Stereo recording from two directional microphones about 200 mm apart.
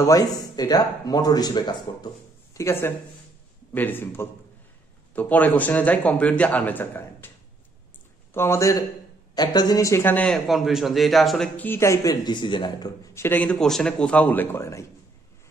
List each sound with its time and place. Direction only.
0.0 s a man's voice: 15° left (ahead or behind)
8.3 s a man's voice: 15° left (ahead or behind)